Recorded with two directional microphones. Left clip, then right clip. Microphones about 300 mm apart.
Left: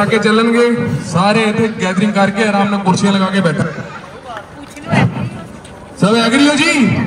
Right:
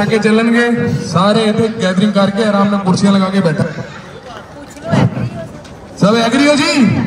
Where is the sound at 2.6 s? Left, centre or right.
Centre.